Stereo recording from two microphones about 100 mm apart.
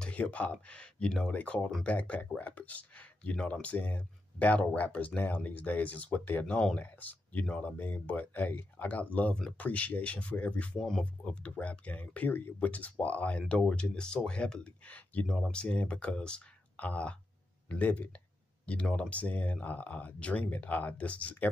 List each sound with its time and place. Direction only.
0.0 s speech: 15° left (ahead or behind)